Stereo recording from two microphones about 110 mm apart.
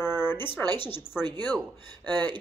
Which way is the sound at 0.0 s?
20° left (ahead or behind).